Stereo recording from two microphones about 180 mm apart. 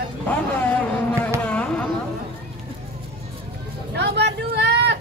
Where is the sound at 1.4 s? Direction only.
5° left (ahead or behind).